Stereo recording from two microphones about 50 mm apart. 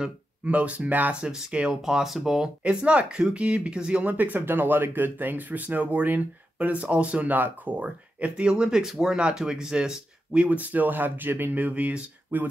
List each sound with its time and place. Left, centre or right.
0.5 s speech: right
1.2 s speech: centre
2.6 s speech: right
4.0 s speech: right
11.5 s speech: right